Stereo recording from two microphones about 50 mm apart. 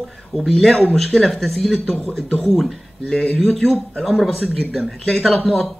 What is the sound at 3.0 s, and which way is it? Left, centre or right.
Speech, centre.